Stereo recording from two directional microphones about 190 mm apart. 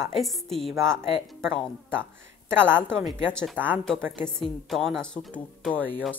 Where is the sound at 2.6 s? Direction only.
10° right (ahead or behind).